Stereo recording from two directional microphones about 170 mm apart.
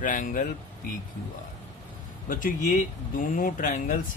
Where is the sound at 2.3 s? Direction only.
50° left (ahead or behind).